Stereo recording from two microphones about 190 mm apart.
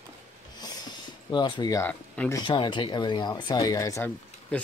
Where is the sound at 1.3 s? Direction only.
25° left (ahead or behind).